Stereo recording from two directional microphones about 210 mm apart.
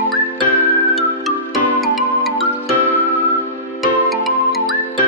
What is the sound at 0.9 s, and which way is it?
Music, centre (ahead or behind).